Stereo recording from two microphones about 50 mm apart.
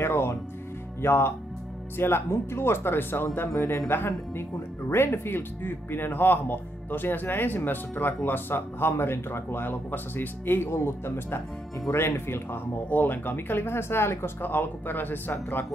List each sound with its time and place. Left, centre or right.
0.0 s music: left
1.0 s speech: left
10.7 s speech: left